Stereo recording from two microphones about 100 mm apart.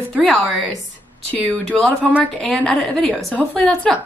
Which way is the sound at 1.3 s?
15° left (ahead or behind).